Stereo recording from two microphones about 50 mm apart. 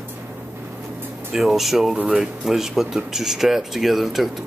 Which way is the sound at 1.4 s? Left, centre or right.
Centre.